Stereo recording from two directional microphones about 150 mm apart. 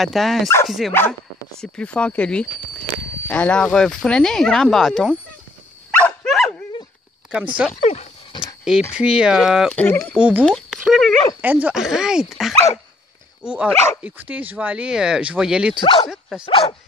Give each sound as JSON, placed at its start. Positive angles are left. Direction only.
{"t": 0.0, "sound": "speech", "side_deg": 0}
{"t": 5.9, "sound": "dog", "side_deg": 5}
{"t": 7.2, "sound": "speech", "side_deg": -10}
{"t": 7.8, "sound": "speech", "side_deg": 45}
{"t": 8.3, "sound": "a sound", "side_deg": 30}
{"t": 8.9, "sound": "speech", "side_deg": -5}
{"t": 9.7, "sound": "speech", "side_deg": 10}
{"t": 10.1, "sound": "speech", "side_deg": -10}
{"t": 11.4, "sound": "speech", "side_deg": -10}
{"t": 15.8, "sound": "speech", "side_deg": 35}
{"t": 16.1, "sound": "speech", "side_deg": -5}
{"t": 16.4, "sound": "speech", "side_deg": 35}